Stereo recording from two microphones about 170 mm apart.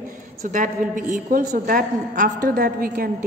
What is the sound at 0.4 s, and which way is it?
A woman's voice, 50° right (ahead or behind).